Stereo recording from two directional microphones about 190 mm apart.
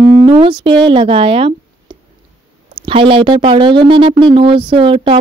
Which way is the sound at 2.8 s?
30° right (ahead or behind).